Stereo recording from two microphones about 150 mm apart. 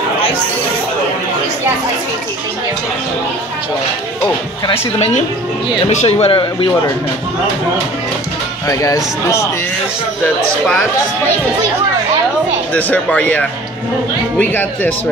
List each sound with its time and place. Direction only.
4.6 s a woman's voice: 45° left (ahead or behind)
8.6 s speech: 20° left (ahead or behind)
10.2 s speech: 10° left (ahead or behind)
12.7 s speech: 10° left (ahead or behind)